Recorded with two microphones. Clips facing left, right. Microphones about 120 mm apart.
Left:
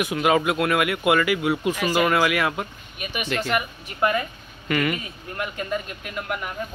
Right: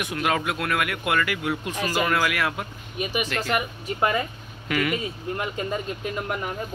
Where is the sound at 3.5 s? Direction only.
30° right (ahead or behind).